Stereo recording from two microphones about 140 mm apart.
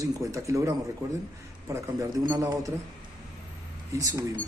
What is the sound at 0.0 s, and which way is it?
Speech, 20° right (ahead or behind).